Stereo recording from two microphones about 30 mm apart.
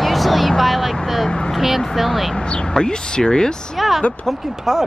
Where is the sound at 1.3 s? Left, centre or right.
Left.